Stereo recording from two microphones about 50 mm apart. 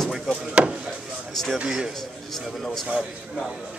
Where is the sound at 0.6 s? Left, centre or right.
Right.